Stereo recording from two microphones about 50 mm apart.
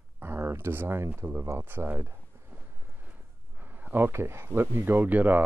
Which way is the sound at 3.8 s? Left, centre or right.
Right.